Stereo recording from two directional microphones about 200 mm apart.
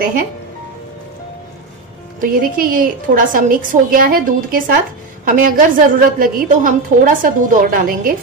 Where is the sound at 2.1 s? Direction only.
45° right (ahead or behind).